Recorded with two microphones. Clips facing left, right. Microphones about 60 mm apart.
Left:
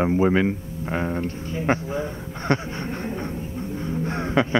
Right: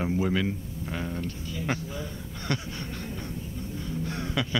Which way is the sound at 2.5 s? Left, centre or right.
Left.